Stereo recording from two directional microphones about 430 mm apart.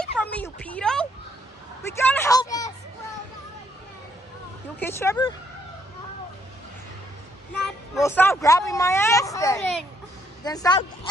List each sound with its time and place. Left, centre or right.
0.0 s a sound: centre
1.8 s a woman's voice: centre
4.7 s speech: centre
7.6 s speech: centre